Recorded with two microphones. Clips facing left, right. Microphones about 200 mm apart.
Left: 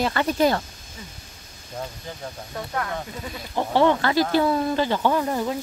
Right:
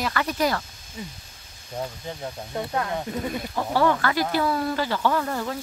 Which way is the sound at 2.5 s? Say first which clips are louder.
Right 2 dB; 20° right (ahead or behind).